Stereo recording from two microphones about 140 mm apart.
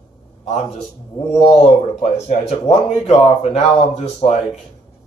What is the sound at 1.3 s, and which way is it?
Speech, 50° left (ahead or behind).